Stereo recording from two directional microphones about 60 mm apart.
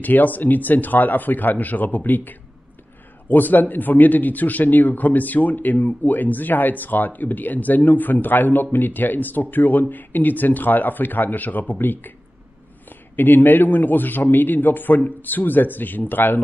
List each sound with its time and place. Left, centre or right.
0.0 s speech: left
13.1 s speech: left